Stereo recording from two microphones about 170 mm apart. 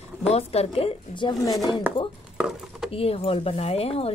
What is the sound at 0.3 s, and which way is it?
A woman's voice, 35° left (ahead or behind).